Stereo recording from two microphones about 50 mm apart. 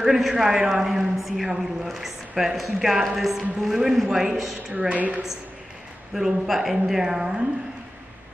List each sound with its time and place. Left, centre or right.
0.0 s a woman's voice: centre
4.8 s a woman's voice: right
6.1 s speech: centre